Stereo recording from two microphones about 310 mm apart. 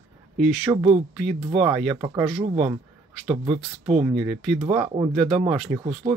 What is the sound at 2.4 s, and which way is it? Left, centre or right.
Speech, centre.